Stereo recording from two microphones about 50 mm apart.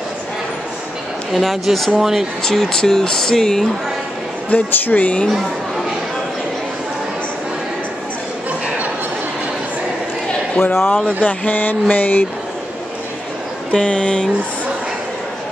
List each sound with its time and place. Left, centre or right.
1.3 s speech: centre
2.4 s speech: centre
4.6 s speech: left
10.6 s speech: left
11.1 s speech: left
13.7 s speech: left